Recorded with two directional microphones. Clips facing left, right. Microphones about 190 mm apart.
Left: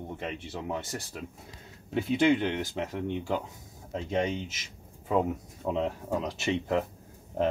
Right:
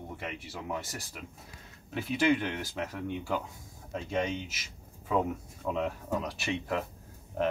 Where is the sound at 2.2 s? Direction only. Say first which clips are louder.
Left 2 dB; 25° left (ahead or behind).